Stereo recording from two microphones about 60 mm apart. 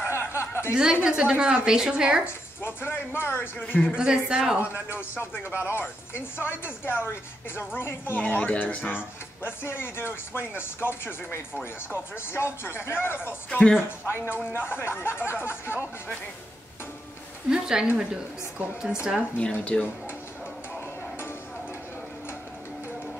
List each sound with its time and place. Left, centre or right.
0.0 s chuckle: left
1.0 s a woman's voice: centre
2.2 s speech: left
3.9 s a woman's voice: centre
4.7 s speech: left
13.5 s speech: centre
13.7 s speech: left
17.5 s a woman's voice: centre
19.3 s speech: left